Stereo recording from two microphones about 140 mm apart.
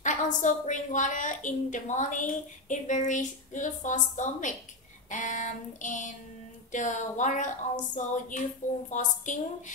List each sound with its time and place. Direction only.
0.0 s a woman's voice: 65° left (ahead or behind)